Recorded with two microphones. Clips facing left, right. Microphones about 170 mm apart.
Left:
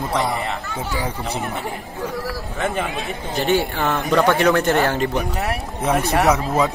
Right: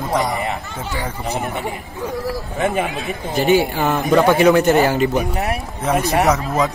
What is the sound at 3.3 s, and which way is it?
Speech, 10° right (ahead or behind).